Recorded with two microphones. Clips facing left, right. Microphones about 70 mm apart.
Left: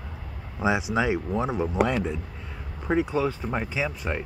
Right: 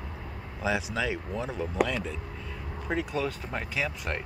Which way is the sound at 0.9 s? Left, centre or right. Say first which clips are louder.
Left 6 dB; left.